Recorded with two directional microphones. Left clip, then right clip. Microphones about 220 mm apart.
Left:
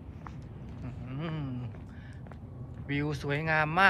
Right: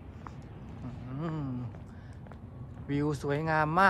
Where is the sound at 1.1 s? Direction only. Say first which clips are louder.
Right 1 dB; 15° right (ahead or behind).